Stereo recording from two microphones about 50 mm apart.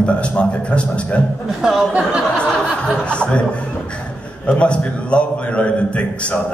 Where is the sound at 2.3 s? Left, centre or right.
Left.